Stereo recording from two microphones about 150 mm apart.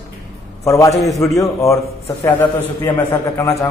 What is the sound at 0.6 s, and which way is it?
A man's voice, 20° left (ahead or behind).